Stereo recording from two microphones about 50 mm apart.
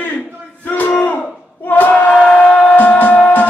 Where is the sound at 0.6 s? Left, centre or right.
Left.